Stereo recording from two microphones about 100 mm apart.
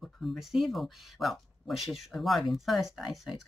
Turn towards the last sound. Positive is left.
turn(degrees=0)  # may be behind; listen again after turning